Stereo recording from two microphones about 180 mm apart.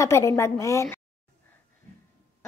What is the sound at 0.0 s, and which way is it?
A child's voice, 15° left (ahead or behind).